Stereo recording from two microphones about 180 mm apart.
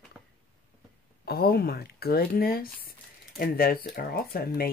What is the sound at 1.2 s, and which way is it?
Speech, 60° left (ahead or behind).